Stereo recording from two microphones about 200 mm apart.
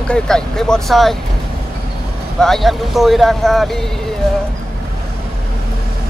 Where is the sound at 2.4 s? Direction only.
Centre (ahead or behind).